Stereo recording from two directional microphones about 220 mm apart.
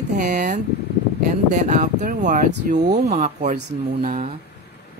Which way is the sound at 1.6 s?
35° right (ahead or behind).